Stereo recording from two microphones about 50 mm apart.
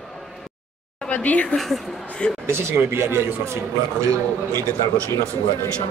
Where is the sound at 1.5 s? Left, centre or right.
Centre.